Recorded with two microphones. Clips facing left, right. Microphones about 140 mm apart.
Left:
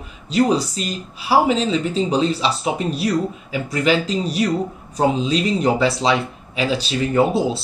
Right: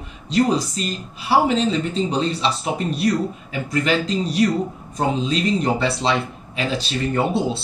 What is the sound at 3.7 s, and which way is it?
Speech, 5° left (ahead or behind).